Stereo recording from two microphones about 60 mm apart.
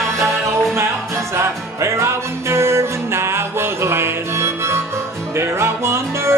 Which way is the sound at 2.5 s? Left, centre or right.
Right.